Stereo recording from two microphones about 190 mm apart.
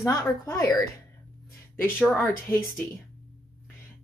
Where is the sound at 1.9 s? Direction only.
Centre (ahead or behind).